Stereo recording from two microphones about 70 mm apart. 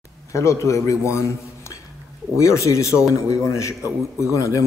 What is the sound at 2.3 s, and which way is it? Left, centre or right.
A man's voice, left.